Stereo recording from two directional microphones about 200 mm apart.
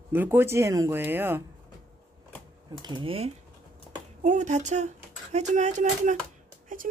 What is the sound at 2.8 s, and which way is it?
Speech, 20° right (ahead or behind).